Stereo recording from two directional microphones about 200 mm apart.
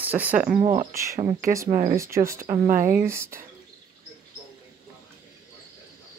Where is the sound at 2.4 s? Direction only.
40° right (ahead or behind).